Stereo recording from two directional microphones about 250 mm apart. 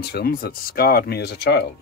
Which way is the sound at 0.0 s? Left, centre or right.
Left.